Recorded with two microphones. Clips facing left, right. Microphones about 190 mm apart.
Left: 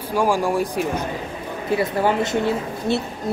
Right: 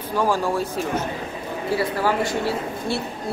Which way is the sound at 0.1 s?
15° left (ahead or behind).